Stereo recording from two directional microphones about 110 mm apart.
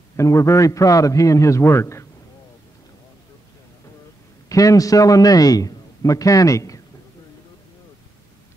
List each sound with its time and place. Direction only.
0.1 s a man's voice: 25° left (ahead or behind)
4.5 s a man's voice: 30° left (ahead or behind)